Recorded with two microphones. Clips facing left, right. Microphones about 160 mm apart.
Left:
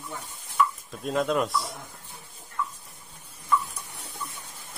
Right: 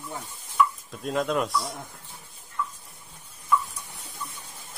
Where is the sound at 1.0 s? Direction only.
Centre (ahead or behind).